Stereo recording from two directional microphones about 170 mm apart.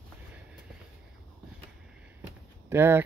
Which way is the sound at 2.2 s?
15° right (ahead or behind).